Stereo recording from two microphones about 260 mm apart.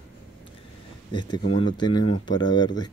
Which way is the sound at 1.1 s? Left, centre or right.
Centre.